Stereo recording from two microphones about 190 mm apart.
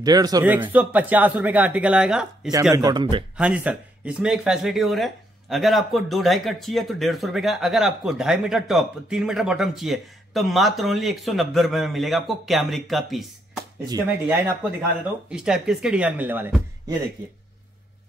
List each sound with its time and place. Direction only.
0.0 s speech: 20° right (ahead or behind)
0.5 s speech: 10° right (ahead or behind)
2.7 s speech: 20° right (ahead or behind)
3.3 s speech: 5° right (ahead or behind)
13.8 s speech: 10° right (ahead or behind)